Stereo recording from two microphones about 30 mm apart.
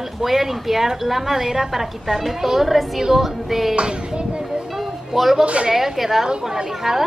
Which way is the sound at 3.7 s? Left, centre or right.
Right.